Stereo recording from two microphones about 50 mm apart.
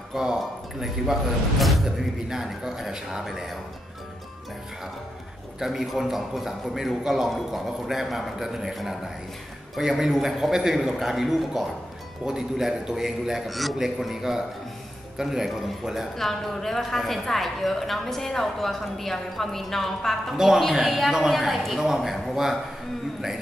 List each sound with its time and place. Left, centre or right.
0.1 s a man's voice: centre
5.6 s a woman's voice: centre
16.2 s a woman's voice: centre
20.3 s a woman's voice: centre